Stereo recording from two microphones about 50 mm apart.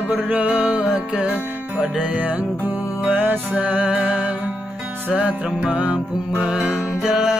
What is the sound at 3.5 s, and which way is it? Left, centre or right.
Music, right.